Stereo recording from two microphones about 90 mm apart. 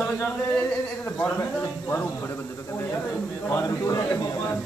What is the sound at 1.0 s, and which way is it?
Speech, 20° left (ahead or behind).